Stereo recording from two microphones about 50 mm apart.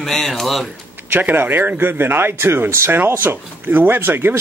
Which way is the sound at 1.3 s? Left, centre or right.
Right.